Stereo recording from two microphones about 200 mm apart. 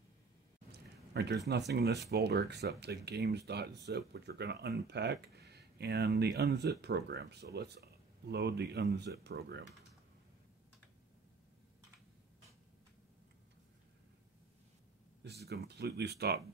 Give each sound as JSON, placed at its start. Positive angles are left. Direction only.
{"t": 0.7, "sound": "a sound", "side_deg": -55}
{"t": 1.7, "sound": "speech", "side_deg": -55}
{"t": 15.2, "sound": "speech", "side_deg": -55}